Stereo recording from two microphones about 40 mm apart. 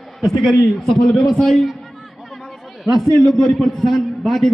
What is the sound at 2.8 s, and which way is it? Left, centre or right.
A man's voice, centre.